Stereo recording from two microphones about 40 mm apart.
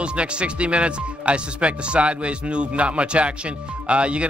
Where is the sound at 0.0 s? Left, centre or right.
Right.